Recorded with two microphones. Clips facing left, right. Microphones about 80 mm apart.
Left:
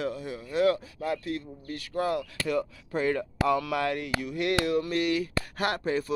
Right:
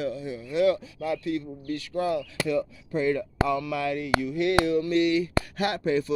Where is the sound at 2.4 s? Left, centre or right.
Left.